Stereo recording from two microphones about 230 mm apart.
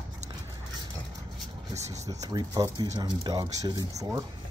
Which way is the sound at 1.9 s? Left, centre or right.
Centre.